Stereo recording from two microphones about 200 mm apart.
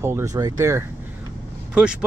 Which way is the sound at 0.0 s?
15° right (ahead or behind).